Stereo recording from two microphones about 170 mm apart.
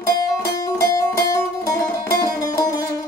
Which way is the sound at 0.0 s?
20° left (ahead or behind).